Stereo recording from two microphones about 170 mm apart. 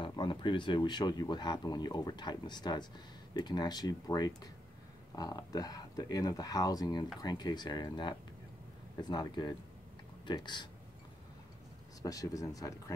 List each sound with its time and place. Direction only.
0.0 s speech: 25° left (ahead or behind)
12.0 s speech: 20° left (ahead or behind)